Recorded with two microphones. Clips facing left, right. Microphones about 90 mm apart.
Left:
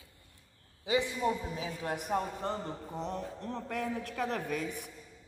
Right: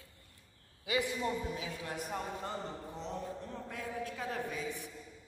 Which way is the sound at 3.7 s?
65° left (ahead or behind).